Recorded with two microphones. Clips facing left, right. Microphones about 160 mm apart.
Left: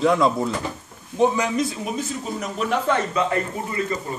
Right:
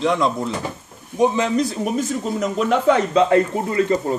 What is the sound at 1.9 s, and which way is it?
Speech, 80° right.